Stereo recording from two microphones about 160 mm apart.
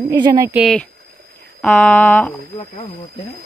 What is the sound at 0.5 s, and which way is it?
Speech, centre (ahead or behind).